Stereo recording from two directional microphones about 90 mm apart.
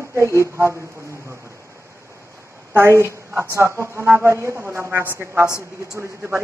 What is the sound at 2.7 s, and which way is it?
A woman's voice, 30° right (ahead or behind).